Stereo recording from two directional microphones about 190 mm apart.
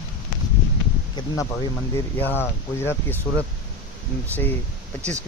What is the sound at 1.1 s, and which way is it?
Speech, 15° left (ahead or behind).